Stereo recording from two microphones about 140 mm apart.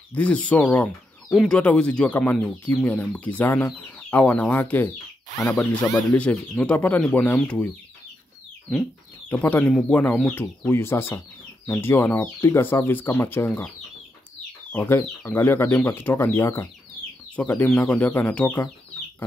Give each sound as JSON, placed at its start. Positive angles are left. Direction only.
{"t": 0.1, "sound": "speech", "side_deg": 10}
{"t": 9.3, "sound": "speech", "side_deg": 15}
{"t": 14.7, "sound": "speech", "side_deg": 15}